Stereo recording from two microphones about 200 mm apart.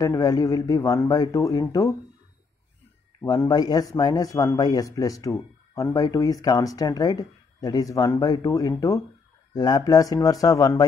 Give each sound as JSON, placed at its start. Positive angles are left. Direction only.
{"t": 0.0, "sound": "speech", "side_deg": 20}
{"t": 3.2, "sound": "speech", "side_deg": 15}